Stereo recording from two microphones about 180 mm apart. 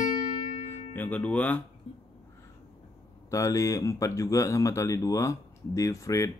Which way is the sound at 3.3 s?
15° left (ahead or behind).